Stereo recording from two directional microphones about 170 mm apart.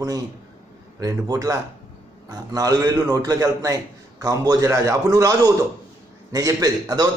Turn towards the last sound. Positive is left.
turn(degrees=-20)  # may be behind; listen again after turning